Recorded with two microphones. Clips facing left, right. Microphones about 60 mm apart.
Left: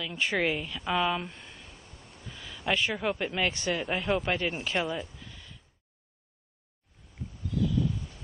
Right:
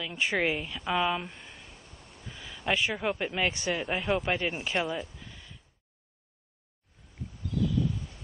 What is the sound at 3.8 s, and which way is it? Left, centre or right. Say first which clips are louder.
Speech: even; centre.